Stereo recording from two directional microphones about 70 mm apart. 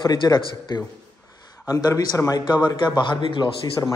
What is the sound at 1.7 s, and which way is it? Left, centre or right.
Speech, left.